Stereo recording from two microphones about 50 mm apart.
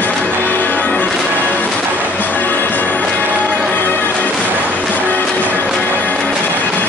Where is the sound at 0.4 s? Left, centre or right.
Left.